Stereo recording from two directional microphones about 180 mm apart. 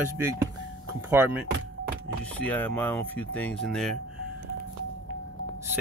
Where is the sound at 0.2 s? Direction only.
15° right (ahead or behind).